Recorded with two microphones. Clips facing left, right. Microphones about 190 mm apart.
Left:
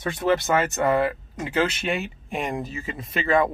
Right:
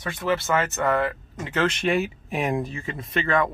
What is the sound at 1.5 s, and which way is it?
Speech, 5° left (ahead or behind).